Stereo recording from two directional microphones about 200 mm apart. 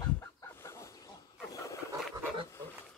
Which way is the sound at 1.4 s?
15° left (ahead or behind).